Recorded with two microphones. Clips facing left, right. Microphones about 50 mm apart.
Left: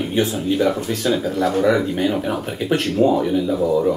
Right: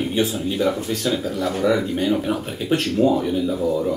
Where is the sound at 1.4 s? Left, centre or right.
Left.